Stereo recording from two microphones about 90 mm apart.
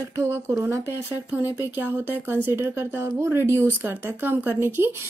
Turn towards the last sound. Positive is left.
turn(degrees=-25)  # may be behind; listen again after turning